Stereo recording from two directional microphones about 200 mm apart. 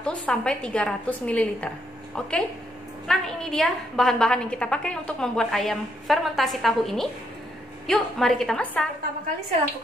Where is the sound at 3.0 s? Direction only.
5° left (ahead or behind).